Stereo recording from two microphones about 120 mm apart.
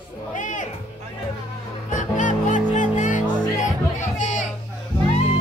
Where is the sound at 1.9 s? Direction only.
90° left.